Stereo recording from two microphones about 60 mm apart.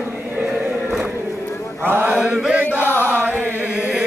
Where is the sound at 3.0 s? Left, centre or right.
Right.